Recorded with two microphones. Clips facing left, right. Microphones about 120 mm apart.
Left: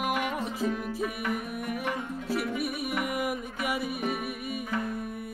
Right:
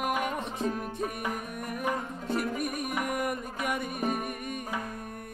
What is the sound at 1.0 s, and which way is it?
Music, 40° right (ahead or behind).